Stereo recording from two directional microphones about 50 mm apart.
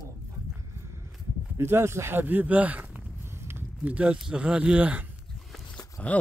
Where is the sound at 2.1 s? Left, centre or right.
Right.